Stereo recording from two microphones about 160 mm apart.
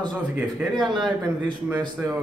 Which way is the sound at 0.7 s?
30° right (ahead or behind).